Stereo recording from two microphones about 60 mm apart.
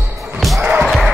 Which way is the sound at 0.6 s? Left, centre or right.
Right.